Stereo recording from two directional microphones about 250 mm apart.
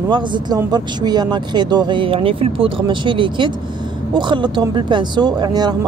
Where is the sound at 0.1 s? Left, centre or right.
Centre.